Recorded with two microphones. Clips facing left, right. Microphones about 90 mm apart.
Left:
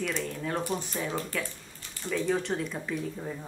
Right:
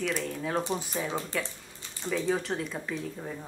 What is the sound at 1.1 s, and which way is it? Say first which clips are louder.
Speech: even; 20° right (ahead or behind).